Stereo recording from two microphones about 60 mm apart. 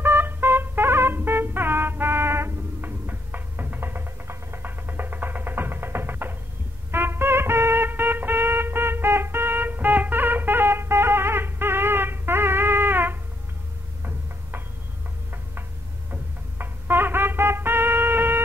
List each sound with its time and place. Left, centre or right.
0.0 s music: right
16.1 s music: right